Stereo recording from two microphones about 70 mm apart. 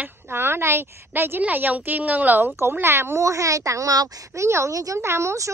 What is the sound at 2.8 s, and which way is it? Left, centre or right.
A woman's voice, right.